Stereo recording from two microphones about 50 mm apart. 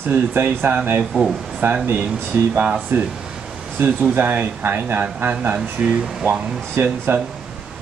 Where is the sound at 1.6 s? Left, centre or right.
Right.